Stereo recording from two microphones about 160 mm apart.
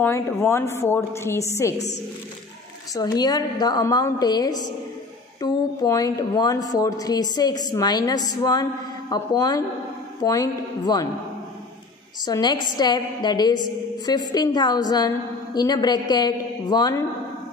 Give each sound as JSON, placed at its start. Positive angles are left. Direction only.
{"t": 0.0, "sound": "a woman's voice", "side_deg": 15}
{"t": 12.3, "sound": "speech", "side_deg": 25}